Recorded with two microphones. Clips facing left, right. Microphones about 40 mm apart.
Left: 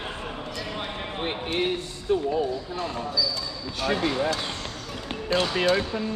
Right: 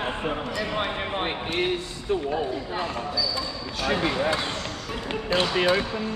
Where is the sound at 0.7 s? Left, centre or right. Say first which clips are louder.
Right 6 dB; right.